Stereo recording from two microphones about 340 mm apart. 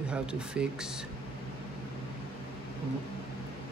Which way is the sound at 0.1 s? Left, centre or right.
Centre.